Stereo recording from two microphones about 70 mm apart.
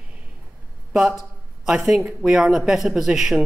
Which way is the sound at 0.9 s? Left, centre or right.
Centre.